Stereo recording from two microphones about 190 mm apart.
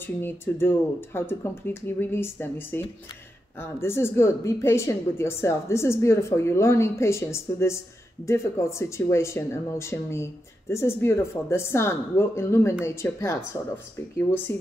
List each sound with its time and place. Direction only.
0.0 s a woman's voice: 10° left (ahead or behind)
14.5 s a woman's voice: 15° left (ahead or behind)